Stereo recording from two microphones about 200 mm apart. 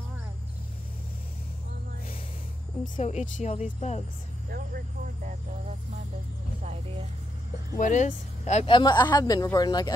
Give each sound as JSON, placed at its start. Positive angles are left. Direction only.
{"t": 3.0, "sound": "speech", "side_deg": 35}
{"t": 4.5, "sound": "speech", "side_deg": -50}
{"t": 7.7, "sound": "speech", "side_deg": 40}
{"t": 8.9, "sound": "speech", "side_deg": 15}